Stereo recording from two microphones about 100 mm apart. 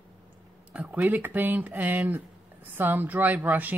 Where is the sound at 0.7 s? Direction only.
15° right (ahead or behind).